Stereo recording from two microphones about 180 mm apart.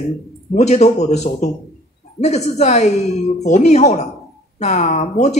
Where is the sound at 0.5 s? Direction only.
40° left (ahead or behind).